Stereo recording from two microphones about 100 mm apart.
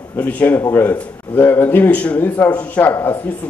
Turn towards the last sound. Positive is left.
turn(degrees=20)  # may be behind; listen again after turning